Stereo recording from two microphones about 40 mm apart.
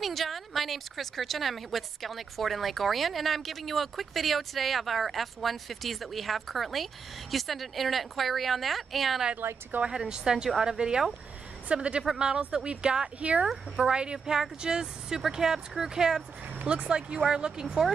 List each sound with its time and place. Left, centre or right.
0.0 s speech: centre
9.4 s a woman's voice: right
9.8 s speech: centre
13.2 s speech: right; by 16.2 s centre
16.6 s speech: right